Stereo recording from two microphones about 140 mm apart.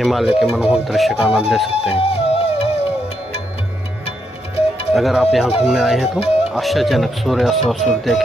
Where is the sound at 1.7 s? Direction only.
45° left (ahead or behind).